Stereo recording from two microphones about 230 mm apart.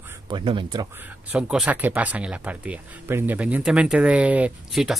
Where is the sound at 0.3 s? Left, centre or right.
Right.